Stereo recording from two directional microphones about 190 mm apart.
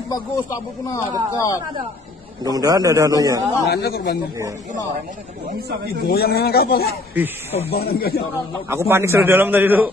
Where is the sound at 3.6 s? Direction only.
55° left (ahead or behind).